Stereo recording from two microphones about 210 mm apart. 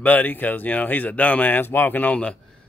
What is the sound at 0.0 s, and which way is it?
Speech, 10° left (ahead or behind).